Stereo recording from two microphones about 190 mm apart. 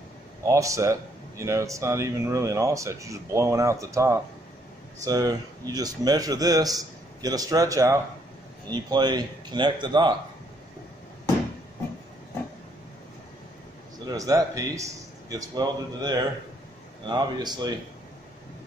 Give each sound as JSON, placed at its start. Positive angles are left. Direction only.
{"t": 0.5, "sound": "a man's voice", "side_deg": -15}
{"t": 14.0, "sound": "a man's voice", "side_deg": -20}